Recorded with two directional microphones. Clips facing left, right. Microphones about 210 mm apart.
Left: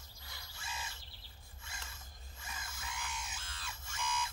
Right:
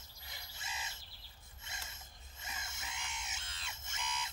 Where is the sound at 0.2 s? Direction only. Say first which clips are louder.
Even; 20° right (ahead or behind).